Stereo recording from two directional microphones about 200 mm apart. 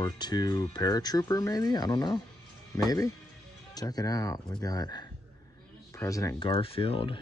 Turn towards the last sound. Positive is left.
turn(degrees=25)  # may be behind; listen again after turning